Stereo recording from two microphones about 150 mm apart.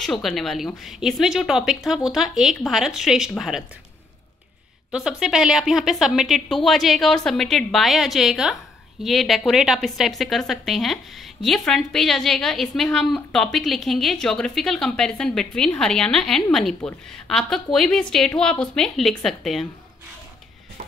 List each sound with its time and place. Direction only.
0.0 s a woman's voice: centre (ahead or behind)
4.9 s a woman's voice: 5° right (ahead or behind)